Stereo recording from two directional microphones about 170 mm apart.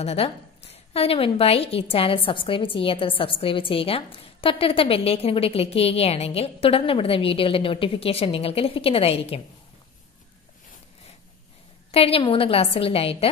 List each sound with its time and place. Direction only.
0.0 s a woman's voice: 35° left (ahead or behind)
11.9 s a woman's voice: 35° left (ahead or behind)